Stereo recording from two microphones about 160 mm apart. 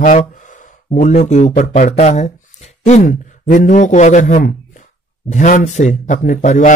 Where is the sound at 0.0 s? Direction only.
55° left (ahead or behind).